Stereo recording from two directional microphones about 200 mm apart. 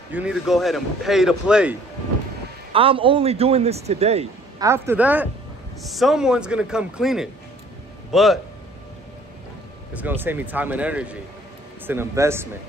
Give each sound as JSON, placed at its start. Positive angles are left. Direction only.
{"t": 0.1, "sound": "speech", "side_deg": -5}
{"t": 2.7, "sound": "a man's voice", "side_deg": -25}
{"t": 4.6, "sound": "a man's voice", "side_deg": -15}
{"t": 9.9, "sound": "speech", "side_deg": -10}